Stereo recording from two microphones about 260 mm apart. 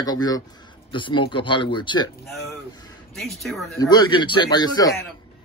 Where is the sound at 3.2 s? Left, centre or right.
Centre.